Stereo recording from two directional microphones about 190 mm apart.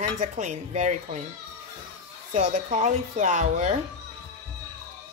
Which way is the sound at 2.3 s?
40° right (ahead or behind).